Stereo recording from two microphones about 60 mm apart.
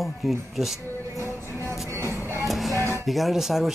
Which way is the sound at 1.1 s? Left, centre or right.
Right.